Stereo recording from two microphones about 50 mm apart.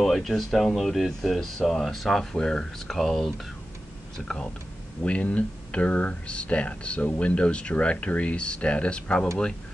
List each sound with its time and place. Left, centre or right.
0.0 s speech: centre
3.0 s speech: centre
5.2 s speech: left